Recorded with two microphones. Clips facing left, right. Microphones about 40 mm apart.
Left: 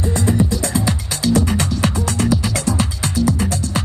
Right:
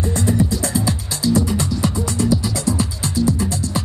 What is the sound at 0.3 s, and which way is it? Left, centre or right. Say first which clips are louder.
Music: left 1 dB; left.